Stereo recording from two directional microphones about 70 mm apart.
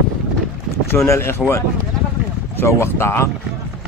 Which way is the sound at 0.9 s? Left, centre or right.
Left.